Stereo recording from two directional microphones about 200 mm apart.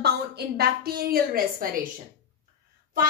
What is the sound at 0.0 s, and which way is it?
A woman's voice, 55° right (ahead or behind).